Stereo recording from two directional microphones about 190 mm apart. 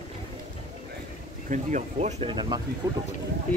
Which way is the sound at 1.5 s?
40° right (ahead or behind).